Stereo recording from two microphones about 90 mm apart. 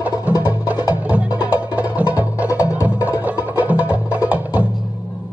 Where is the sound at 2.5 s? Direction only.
35° left (ahead or behind).